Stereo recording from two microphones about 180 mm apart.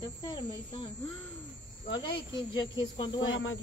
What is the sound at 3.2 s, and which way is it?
Speech, 90° left.